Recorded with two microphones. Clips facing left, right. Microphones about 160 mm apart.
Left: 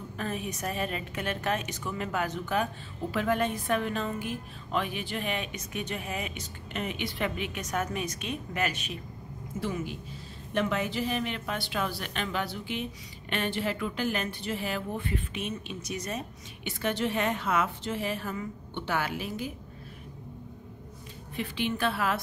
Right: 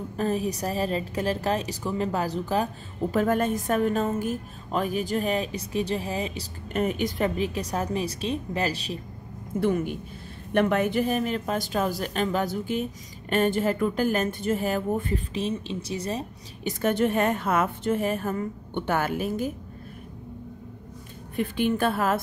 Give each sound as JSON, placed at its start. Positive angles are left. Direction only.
{"t": 0.2, "sound": "a woman's voice", "side_deg": -35}
{"t": 9.6, "sound": "a woman's voice", "side_deg": -55}
{"t": 16.8, "sound": "a woman's voice", "side_deg": -50}
{"t": 21.4, "sound": "a woman's voice", "side_deg": -50}